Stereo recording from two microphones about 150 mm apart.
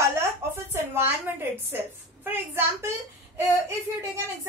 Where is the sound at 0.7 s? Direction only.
15° right (ahead or behind).